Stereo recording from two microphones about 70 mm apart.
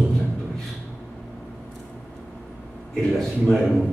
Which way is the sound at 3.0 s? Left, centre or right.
Centre.